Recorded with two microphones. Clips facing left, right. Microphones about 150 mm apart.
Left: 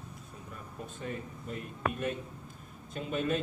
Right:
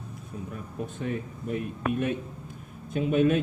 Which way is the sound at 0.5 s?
55° right (ahead or behind).